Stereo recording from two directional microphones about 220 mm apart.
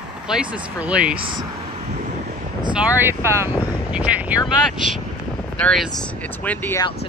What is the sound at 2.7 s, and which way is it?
Speech, 5° right (ahead or behind).